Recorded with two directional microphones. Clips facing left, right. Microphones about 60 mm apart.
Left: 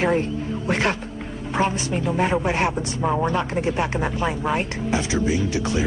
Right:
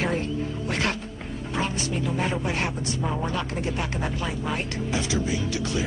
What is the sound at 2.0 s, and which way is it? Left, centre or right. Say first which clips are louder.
Speech: left 7 dB; left.